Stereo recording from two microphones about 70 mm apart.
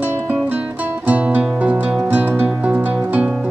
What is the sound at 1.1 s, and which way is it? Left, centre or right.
Music, right.